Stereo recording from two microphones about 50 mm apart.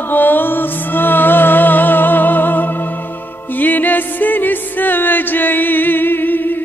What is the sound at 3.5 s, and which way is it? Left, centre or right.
Music, left.